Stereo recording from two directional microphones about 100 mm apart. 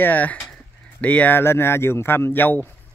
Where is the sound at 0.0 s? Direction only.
15° left (ahead or behind).